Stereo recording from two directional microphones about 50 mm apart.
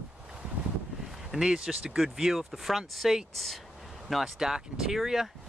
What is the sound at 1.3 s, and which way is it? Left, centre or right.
Speech, centre.